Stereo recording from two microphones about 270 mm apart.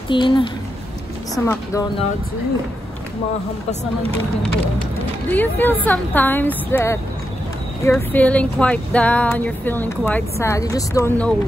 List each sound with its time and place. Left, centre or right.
0.1 s a woman's voice: centre
5.3 s a woman's voice: centre